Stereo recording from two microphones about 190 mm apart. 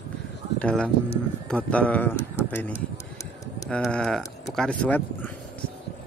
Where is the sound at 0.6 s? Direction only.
5° left (ahead or behind).